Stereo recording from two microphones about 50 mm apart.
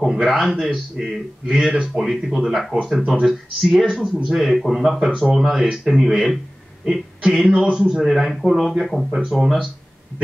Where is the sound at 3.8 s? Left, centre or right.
Centre.